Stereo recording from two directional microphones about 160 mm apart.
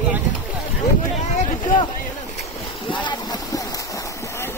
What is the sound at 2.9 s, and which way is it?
Boat, 30° left (ahead or behind).